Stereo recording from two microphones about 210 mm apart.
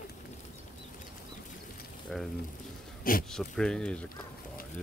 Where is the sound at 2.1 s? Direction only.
5° left (ahead or behind).